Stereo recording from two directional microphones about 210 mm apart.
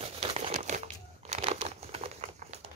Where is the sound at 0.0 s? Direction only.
30° right (ahead or behind).